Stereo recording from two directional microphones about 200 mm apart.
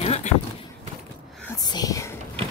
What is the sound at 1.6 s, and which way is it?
Whispering, 20° left (ahead or behind).